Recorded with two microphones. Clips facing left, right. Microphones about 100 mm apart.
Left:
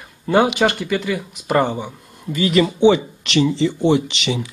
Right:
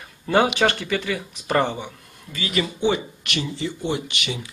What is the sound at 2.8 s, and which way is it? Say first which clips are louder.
Speech: left 8 dB; 90° left.